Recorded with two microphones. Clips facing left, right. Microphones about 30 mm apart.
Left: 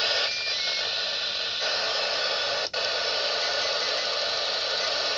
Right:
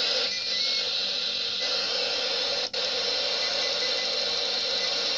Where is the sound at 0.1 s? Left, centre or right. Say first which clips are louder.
Left 1 dB; left.